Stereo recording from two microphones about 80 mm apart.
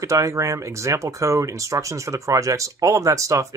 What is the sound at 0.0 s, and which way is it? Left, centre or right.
Speech, right.